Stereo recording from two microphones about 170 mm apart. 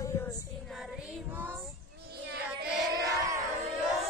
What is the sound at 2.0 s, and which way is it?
Child singing, 70° right (ahead or behind).